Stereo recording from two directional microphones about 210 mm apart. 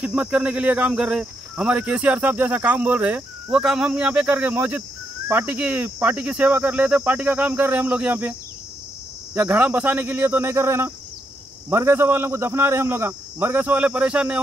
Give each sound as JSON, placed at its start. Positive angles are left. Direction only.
{"t": 0.0, "sound": "speech", "side_deg": -5}